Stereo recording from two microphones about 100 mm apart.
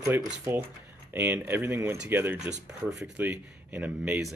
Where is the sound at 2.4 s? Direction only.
10° right (ahead or behind).